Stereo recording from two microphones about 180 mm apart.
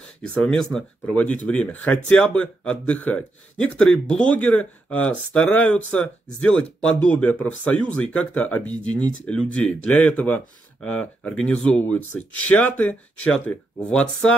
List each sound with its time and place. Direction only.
0.4 s speech: 5° left (ahead or behind)